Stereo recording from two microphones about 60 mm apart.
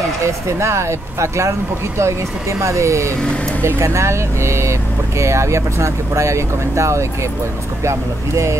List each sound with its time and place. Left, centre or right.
0.2 s speech: right
2.6 s speech: right